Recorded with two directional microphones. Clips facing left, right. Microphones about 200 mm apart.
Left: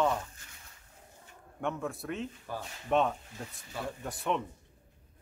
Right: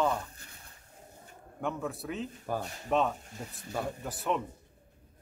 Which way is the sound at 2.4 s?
45° right (ahead or behind).